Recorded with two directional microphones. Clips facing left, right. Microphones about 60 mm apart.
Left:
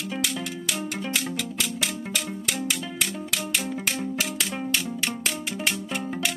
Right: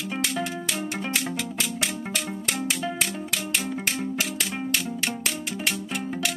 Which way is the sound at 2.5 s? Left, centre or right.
Right.